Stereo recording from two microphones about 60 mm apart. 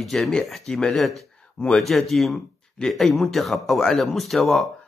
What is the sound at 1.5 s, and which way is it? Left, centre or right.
Speech, centre.